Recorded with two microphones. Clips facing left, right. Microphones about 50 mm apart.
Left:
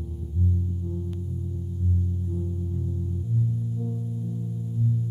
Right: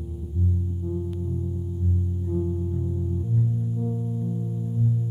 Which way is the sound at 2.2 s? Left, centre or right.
Right.